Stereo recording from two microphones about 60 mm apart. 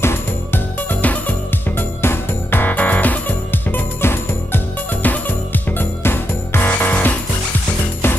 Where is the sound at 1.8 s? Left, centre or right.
Left.